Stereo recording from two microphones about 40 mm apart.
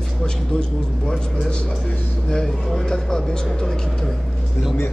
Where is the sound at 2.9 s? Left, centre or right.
Centre.